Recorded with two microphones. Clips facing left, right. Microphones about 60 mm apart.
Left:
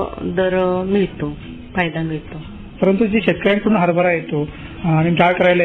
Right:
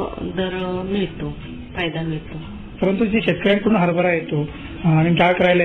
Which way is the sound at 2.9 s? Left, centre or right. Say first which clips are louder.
Left 3 dB; centre.